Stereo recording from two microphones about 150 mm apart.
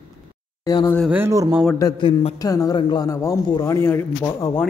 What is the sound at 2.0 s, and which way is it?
Speech, 35° left (ahead or behind).